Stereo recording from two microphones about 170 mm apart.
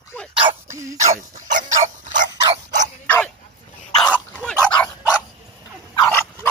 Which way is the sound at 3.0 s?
10° left (ahead or behind).